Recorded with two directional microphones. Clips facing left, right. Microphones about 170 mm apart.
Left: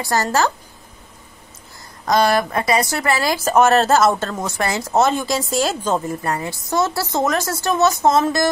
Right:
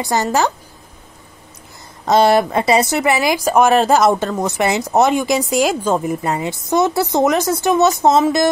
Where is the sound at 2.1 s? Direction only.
25° right (ahead or behind).